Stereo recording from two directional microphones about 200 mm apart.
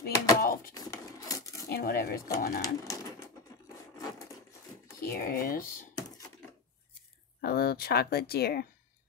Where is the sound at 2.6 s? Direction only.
15° left (ahead or behind).